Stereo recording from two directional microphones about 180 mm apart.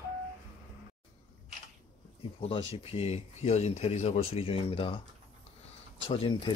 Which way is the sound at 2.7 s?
35° left (ahead or behind).